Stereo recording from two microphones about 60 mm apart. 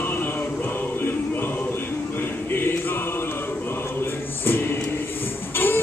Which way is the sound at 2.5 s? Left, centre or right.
Left.